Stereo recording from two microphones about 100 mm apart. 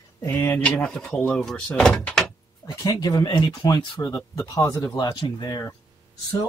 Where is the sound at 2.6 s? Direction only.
45° left (ahead or behind).